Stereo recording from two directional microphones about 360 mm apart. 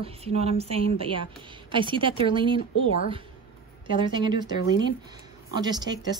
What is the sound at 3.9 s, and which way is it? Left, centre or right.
Speech, centre.